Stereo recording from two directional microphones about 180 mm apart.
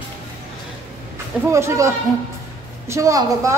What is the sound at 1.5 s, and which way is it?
Speech, 15° right (ahead or behind).